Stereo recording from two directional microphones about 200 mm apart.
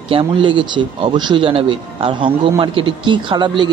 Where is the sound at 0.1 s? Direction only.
25° right (ahead or behind).